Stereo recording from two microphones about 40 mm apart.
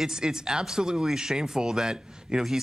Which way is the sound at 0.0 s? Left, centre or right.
Centre.